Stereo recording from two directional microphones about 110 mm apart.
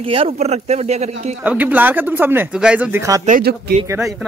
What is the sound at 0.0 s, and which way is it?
Speech, 60° right (ahead or behind).